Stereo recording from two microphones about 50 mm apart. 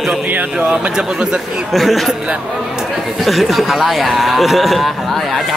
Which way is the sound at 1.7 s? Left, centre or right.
Centre.